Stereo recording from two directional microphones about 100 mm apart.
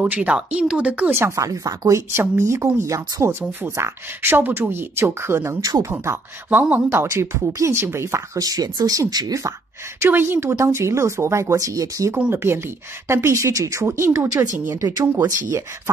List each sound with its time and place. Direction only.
0.0 s speech: 15° right (ahead or behind)
1.1 s speech: 30° right (ahead or behind)
5.6 s speech: 40° right (ahead or behind)
5.9 s speech: 20° right (ahead or behind)
9.9 s speech: 25° right (ahead or behind)
12.2 s speech: 20° right (ahead or behind)